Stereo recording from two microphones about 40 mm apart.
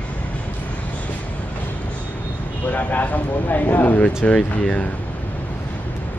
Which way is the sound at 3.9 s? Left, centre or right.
Left.